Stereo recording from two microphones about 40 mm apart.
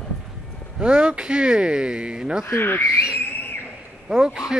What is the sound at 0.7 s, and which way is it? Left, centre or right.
Speech, right.